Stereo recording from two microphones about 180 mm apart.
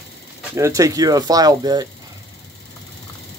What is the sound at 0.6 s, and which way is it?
Speech, 15° right (ahead or behind).